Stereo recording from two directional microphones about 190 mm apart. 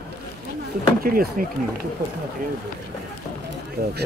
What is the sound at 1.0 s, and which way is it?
Speech, 50° right (ahead or behind).